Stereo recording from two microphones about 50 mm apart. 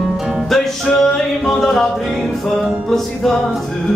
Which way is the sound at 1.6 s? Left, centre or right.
Centre.